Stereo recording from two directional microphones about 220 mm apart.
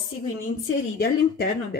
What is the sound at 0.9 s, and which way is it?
Speech, 45° left (ahead or behind).